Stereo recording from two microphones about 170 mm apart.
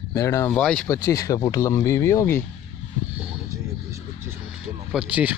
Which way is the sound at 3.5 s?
15° right (ahead or behind).